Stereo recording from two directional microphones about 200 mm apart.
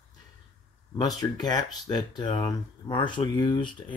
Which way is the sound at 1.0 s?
20° left (ahead or behind).